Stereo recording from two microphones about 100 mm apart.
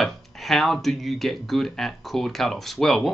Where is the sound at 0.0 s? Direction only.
Centre (ahead or behind).